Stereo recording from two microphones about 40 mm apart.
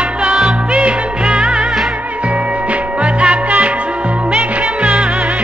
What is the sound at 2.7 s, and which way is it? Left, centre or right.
Music, right.